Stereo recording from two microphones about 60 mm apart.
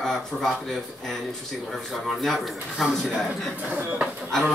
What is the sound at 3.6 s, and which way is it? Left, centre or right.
Speech, right.